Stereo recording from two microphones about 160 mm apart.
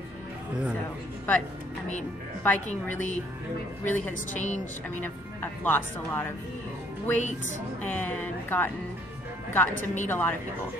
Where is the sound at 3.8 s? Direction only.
10° left (ahead or behind).